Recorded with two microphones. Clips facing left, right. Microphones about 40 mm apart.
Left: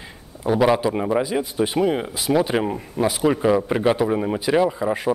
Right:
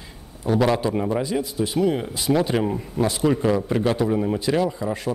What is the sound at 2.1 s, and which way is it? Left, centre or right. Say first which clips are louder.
A man's voice: left 1 dB; centre.